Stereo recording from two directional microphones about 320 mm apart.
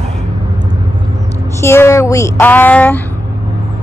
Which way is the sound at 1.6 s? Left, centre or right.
Centre.